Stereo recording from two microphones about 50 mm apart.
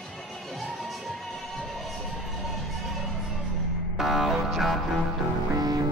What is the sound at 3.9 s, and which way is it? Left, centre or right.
Music, centre.